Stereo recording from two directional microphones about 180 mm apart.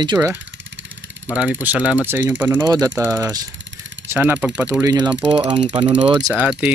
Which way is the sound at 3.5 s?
90° right.